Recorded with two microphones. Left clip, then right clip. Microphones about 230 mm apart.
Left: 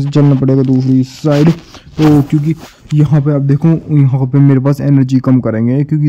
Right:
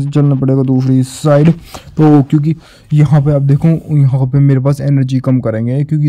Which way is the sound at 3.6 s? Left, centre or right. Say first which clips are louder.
Left 2 dB; centre.